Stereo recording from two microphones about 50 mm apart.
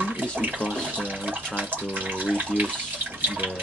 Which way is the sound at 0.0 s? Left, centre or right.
Right.